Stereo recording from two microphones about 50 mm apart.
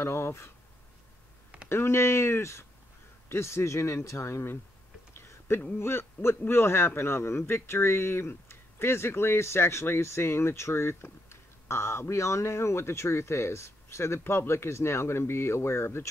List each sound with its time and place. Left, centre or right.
0.0 s speech: left
1.7 s speech: left
5.1 s a sound: left
5.8 s speech: left